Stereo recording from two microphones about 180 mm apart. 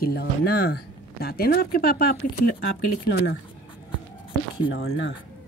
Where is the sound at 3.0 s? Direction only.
65° left (ahead or behind).